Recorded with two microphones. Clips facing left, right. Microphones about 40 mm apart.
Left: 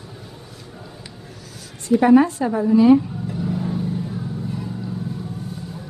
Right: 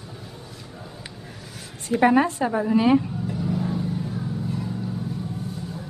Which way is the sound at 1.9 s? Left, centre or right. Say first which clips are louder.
Left 5 dB; centre.